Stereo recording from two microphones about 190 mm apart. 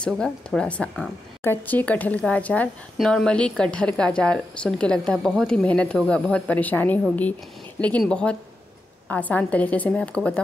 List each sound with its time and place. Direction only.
0.0 s a woman's voice: 5° left (ahead or behind)